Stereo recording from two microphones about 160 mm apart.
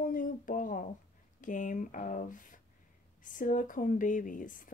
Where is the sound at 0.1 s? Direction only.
55° left (ahead or behind).